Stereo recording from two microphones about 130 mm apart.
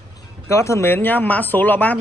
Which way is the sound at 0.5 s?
20° left (ahead or behind).